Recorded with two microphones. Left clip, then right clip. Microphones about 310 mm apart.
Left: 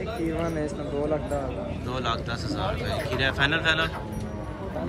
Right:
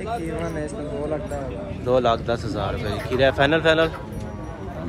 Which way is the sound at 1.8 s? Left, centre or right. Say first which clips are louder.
Right 12 dB; centre.